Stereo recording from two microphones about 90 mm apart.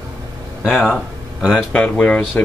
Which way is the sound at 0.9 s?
Centre (ahead or behind).